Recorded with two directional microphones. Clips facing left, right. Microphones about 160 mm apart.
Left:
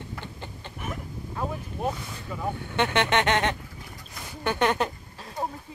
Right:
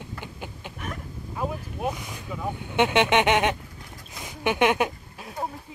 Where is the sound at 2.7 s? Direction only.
15° right (ahead or behind).